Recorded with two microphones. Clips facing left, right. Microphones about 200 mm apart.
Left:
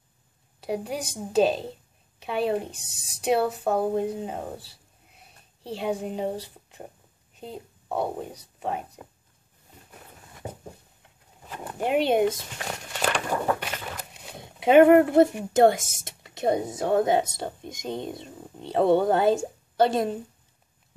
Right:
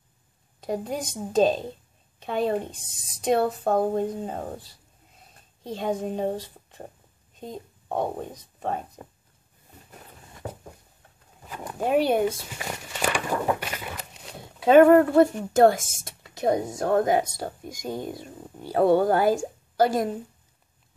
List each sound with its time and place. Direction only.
0.6 s a woman's voice: 10° left (ahead or behind)
11.4 s bird: 10° right (ahead or behind)
11.8 s speech: 20° left (ahead or behind)
12.4 s walk: 5° right (ahead or behind)
13.7 s a sound: 5° right (ahead or behind)
14.4 s speech: 20° left (ahead or behind)
16.0 s a sound: 20° left (ahead or behind)
16.8 s speech: 25° left (ahead or behind)